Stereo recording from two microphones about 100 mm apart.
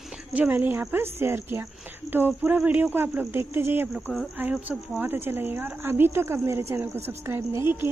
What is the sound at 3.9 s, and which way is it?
Speech, centre (ahead or behind).